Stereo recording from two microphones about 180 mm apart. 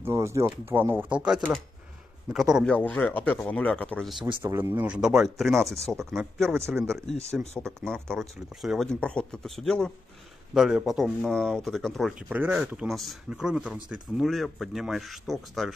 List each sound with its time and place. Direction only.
0.0 s speech: 15° right (ahead or behind); by 4.2 s 5° left (ahead or behind)
4.4 s speech: 15° right (ahead or behind); by 6.5 s centre (ahead or behind)
6.5 s speech: 15° right (ahead or behind)
6.8 s speech: centre (ahead or behind)